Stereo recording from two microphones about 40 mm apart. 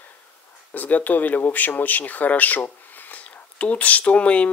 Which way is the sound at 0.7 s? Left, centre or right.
Left.